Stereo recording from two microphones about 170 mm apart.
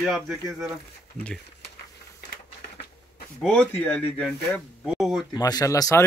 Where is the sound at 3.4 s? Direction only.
5° left (ahead or behind).